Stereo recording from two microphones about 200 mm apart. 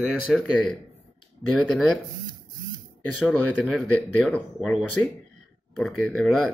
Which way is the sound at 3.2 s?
Centre (ahead or behind).